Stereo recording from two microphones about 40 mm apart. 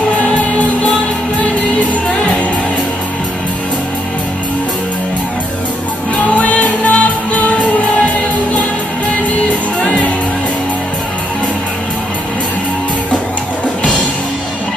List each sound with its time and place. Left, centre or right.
6.1 s music: left
9.8 s music: left